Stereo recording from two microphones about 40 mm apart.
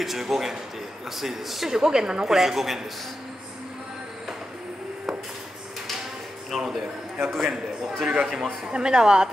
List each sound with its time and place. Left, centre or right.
0.0 s a woman's voice: centre
6.5 s a sound: centre
7.2 s a man's voice: centre
8.7 s a woman's voice: centre